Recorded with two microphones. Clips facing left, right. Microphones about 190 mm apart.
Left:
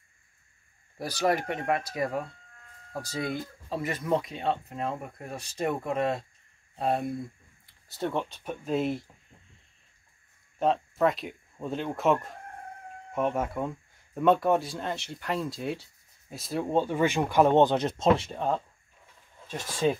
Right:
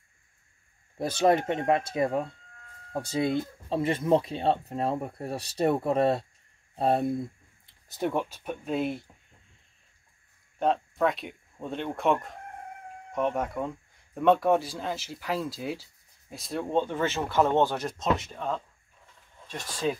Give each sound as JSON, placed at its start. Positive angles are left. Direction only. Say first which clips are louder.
{"t": 0.9, "sound": "speech", "louder": "right 4 dB", "side_deg": -25}
{"t": 7.9, "sound": "speech", "louder": "right 2 dB", "side_deg": -15}
{"t": 10.6, "sound": "speech", "louder": "left 1 dB", "side_deg": 0}